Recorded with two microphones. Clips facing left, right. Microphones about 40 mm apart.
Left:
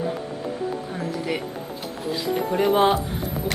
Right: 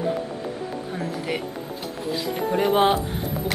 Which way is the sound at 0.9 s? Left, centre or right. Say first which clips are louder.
Right 3 dB; centre.